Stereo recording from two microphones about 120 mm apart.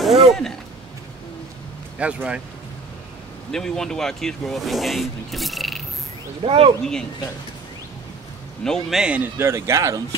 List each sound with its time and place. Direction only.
0.0 s speech: centre (ahead or behind)
2.0 s speech: 10° right (ahead or behind)
3.5 s speech: 5° left (ahead or behind)
6.4 s speech: 50° right (ahead or behind)
8.6 s a man's voice: 5° left (ahead or behind)
8.9 s speech: 10° right (ahead or behind); by 10.0 s 25° right (ahead or behind)